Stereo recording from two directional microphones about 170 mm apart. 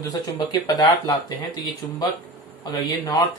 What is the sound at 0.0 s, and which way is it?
Speech, 20° left (ahead or behind).